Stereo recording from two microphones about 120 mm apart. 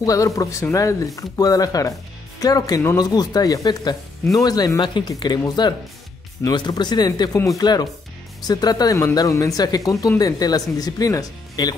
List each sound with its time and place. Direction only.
0.0 s speech: 30° left (ahead or behind)
6.5 s speech: 35° left (ahead or behind)